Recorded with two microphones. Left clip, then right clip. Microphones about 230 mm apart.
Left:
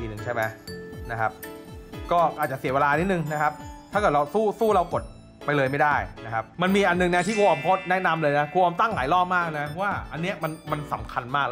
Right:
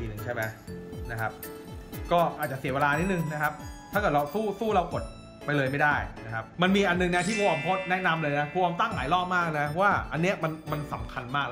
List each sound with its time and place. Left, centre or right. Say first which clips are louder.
0.3 s speech: left 5 dB; left
7.2 s speech: left 5 dB; centre
7.9 s speech: left 4 dB; centre